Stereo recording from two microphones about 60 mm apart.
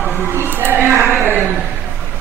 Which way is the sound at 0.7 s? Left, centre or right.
Right.